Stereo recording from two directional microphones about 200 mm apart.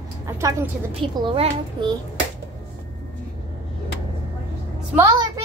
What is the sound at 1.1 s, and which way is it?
Speech, 25° right (ahead or behind).